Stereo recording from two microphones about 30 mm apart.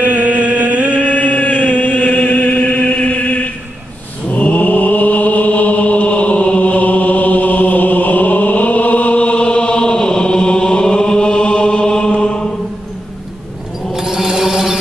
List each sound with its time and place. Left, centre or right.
0.0 s a sound: right
0.9 s chant: left
2.3 s chant: left
4.3 s mantra: left
13.9 s chant: centre